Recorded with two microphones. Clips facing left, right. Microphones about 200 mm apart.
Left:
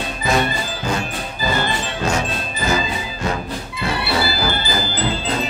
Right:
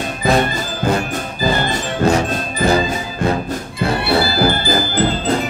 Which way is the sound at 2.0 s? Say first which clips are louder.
Right 7 dB; 35° right (ahead or behind).